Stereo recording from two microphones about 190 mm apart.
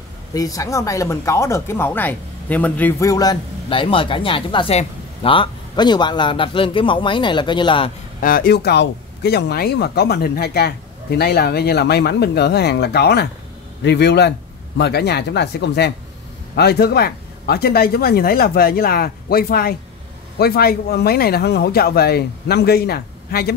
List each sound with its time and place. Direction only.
0.3 s speech: 20° left (ahead or behind)
8.2 s speech: 50° left (ahead or behind)